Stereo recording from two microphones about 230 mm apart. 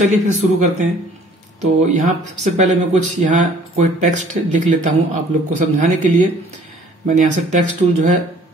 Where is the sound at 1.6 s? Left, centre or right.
Right.